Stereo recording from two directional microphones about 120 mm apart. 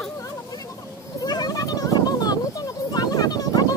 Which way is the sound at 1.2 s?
35° left (ahead or behind).